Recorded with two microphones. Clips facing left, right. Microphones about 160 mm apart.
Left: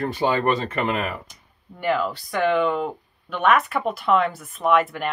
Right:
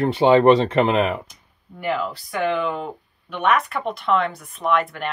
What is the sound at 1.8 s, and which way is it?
Speech, centre (ahead or behind).